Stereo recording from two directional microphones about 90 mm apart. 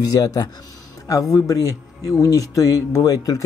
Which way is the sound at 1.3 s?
40° left (ahead or behind).